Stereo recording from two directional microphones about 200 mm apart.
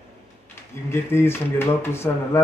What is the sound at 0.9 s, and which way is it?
Speech, 10° left (ahead or behind).